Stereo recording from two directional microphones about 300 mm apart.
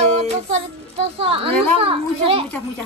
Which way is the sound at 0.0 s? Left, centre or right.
Right.